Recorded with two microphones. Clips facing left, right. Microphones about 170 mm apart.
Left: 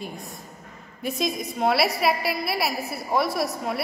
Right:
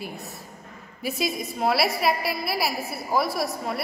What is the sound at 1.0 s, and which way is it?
A woman's voice, 5° right (ahead or behind).